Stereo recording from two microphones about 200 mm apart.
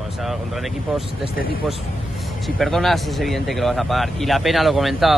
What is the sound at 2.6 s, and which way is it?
A man's voice, centre (ahead or behind).